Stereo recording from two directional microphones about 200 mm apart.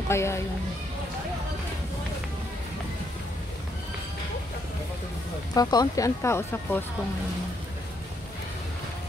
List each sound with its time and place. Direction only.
0.1 s speech: 15° left (ahead or behind)
5.5 s speech: 20° left (ahead or behind)